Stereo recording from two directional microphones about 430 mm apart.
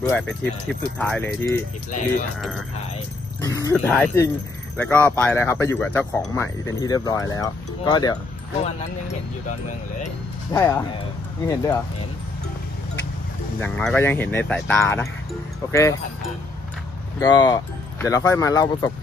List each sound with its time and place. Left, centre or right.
0.0 s speech: centre
1.9 s a man's voice: centre
3.6 s a man's voice: centre
10.5 s a man's voice: centre
13.6 s a man's voice: centre
17.2 s a man's voice: centre